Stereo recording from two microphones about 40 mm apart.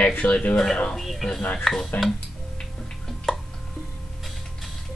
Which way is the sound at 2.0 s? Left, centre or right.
Left.